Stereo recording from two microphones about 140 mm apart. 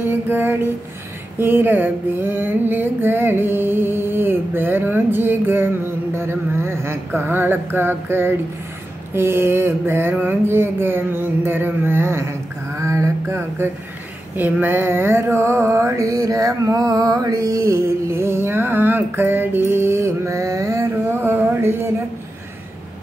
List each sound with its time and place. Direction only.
0.0 s music: 15° right (ahead or behind)
1.4 s mantra: 15° right (ahead or behind)